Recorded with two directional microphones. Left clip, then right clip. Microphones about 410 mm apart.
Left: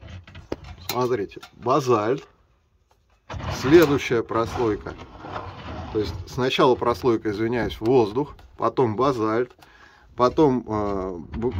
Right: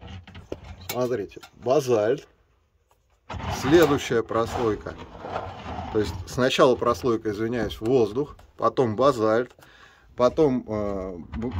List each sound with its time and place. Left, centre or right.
0.7 s cutlery: centre
1.7 s speech: centre
3.7 s speech: centre
5.1 s a sound: right
5.9 s speech: centre